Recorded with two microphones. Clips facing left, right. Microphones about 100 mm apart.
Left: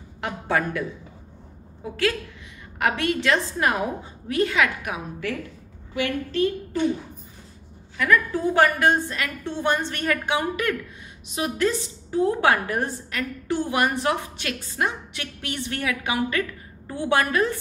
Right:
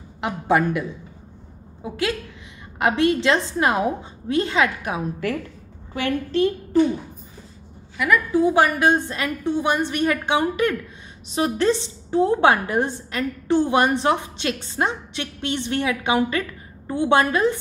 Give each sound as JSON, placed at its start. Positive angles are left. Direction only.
{"t": 0.2, "sound": "a woman's voice", "side_deg": -20}
{"t": 8.0, "sound": "a woman's voice", "side_deg": -10}